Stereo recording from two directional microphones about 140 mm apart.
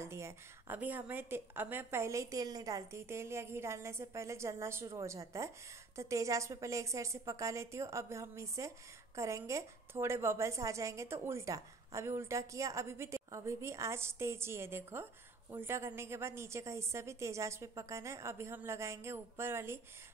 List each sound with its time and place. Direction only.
0.0 s a woman's voice: 20° right (ahead or behind)